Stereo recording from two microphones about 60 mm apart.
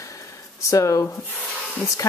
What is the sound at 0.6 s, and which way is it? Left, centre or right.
Speech, left.